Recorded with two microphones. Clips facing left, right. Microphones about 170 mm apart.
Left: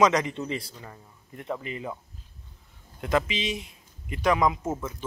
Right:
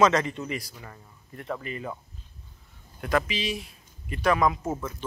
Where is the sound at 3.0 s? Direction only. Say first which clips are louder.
Left 1 dB; 20° left (ahead or behind).